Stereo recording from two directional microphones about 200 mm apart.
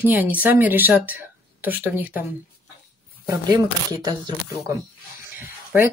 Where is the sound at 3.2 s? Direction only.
20° right (ahead or behind).